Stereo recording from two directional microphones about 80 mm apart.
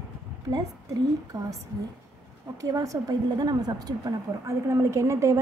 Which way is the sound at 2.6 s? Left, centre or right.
Right.